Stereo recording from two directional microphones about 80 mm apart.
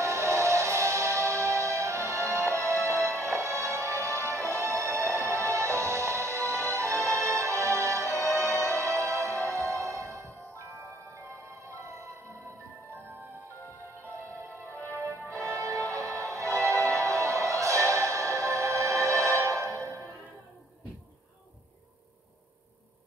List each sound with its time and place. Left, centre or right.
0.0 s music: right
14.7 s music: left
15.0 s music: right